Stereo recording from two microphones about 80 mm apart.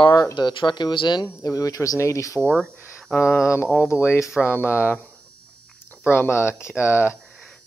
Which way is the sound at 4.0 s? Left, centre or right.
Left.